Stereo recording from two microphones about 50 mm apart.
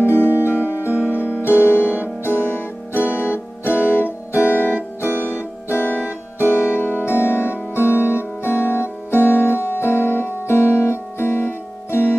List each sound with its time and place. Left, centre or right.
0.0 s music: left